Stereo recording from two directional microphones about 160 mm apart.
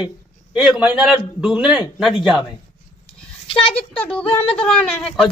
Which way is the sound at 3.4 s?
35° left (ahead or behind).